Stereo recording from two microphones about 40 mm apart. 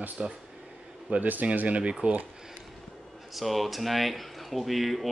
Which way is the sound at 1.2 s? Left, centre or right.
Right.